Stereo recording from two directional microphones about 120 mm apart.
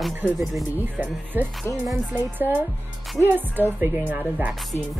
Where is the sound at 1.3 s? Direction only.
15° right (ahead or behind).